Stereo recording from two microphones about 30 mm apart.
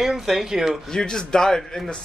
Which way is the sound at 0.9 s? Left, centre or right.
Left.